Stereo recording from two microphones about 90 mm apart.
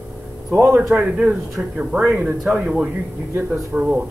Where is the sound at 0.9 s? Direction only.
20° right (ahead or behind).